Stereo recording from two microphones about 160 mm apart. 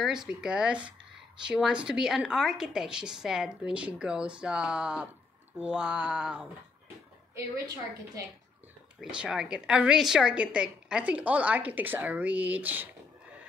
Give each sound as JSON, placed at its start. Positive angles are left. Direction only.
{"t": 0.0, "sound": "a woman's voice", "side_deg": -5}
{"t": 7.3, "sound": "a woman's voice", "side_deg": -20}
{"t": 9.0, "sound": "a woman's voice", "side_deg": -5}